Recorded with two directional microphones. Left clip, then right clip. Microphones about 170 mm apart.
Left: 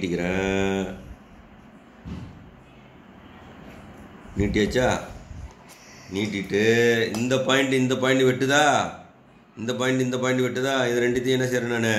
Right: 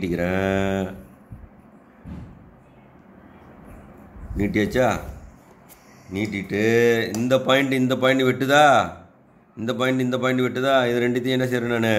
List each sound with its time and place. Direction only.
0.0 s mantra: 70° right (ahead or behind)
4.4 s speech: 70° right (ahead or behind)
6.1 s speech: 70° right (ahead or behind)